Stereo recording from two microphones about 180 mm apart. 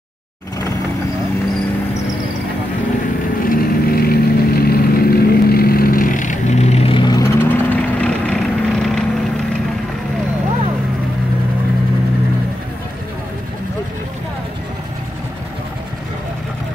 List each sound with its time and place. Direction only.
3.4 s vehicle: 55° left (ahead or behind); by 9.0 s centre (ahead or behind)